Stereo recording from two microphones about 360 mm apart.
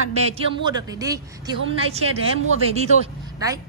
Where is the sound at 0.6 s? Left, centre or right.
Centre.